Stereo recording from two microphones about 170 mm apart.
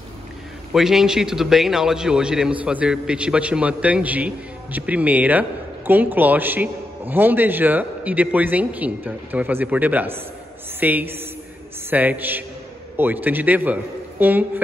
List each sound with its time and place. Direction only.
0.7 s a man's voice: centre (ahead or behind)